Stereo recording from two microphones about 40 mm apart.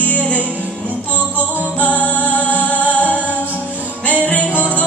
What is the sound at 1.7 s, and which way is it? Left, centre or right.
Music, left.